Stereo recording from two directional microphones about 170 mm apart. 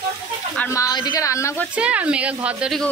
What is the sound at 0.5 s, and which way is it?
Speech, 15° left (ahead or behind).